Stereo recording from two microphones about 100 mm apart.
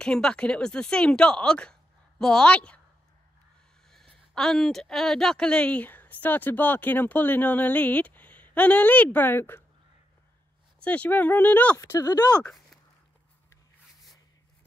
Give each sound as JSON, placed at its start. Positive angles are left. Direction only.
{"t": 0.0, "sound": "speech", "side_deg": 5}
{"t": 3.9, "sound": "speech", "side_deg": 5}
{"t": 10.8, "sound": "speech", "side_deg": 15}
{"t": 11.8, "sound": "speech", "side_deg": 35}